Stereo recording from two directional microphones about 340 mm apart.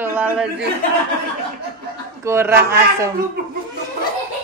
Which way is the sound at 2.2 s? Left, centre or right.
Centre.